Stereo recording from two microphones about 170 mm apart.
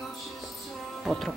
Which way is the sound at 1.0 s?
Centre (ahead or behind).